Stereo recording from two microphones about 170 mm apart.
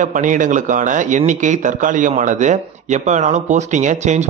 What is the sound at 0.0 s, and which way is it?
Speech, 50° right (ahead or behind).